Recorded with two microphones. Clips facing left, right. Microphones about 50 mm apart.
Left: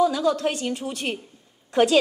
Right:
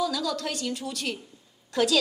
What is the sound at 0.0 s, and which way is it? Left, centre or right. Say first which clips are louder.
A woman's voice: left 8 dB; left.